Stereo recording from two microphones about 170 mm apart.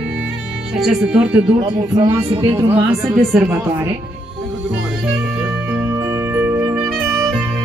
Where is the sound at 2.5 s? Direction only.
10° right (ahead or behind).